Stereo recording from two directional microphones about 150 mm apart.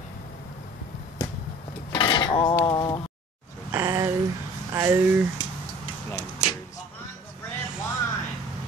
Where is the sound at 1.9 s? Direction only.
30° left (ahead or behind).